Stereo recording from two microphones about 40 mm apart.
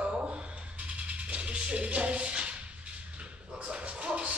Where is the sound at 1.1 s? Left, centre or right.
Right.